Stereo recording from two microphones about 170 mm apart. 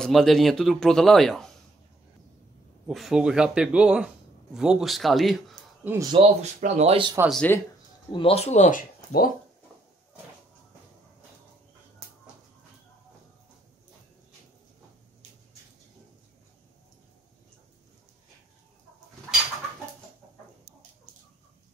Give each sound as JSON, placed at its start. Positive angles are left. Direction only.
{"t": 0.0, "sound": "speech", "side_deg": 0}
{"t": 2.9, "sound": "speech", "side_deg": 0}
{"t": 6.1, "sound": "speech", "side_deg": -35}
{"t": 7.2, "sound": "speech", "side_deg": 5}
{"t": 8.1, "sound": "speech", "side_deg": 35}